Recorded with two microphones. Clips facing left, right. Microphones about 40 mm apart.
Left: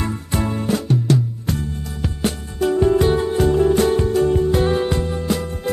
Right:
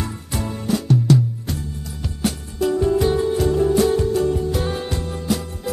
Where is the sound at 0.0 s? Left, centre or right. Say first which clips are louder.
Left 4 dB; left.